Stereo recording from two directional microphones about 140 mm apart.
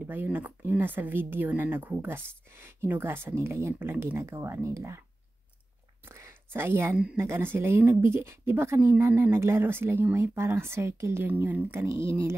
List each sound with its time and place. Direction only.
0.0 s speech: 15° right (ahead or behind)
6.0 s a sound: 20° right (ahead or behind)
7.2 s speech: 15° right (ahead or behind)